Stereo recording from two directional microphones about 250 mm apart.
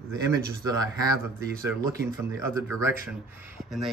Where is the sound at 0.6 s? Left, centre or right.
Centre.